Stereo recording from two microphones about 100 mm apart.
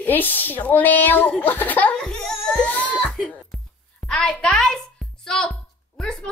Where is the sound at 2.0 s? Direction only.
5° left (ahead or behind).